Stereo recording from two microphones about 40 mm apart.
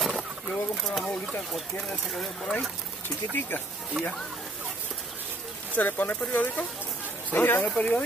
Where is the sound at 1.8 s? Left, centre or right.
Centre.